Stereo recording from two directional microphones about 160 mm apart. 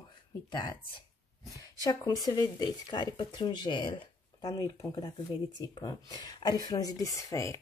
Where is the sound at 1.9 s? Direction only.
25° left (ahead or behind).